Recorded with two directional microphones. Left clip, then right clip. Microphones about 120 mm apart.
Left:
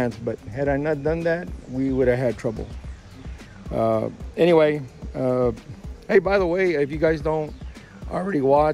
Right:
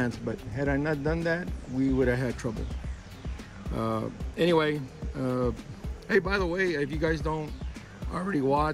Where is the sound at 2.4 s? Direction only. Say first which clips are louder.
Left 8 dB; 10° right (ahead or behind).